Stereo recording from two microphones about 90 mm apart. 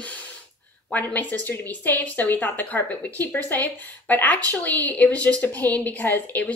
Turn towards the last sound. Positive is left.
turn(degrees=20)  # may be behind; listen again after turning